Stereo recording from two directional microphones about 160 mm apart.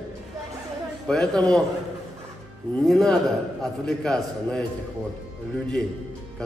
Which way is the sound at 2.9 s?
5° left (ahead or behind).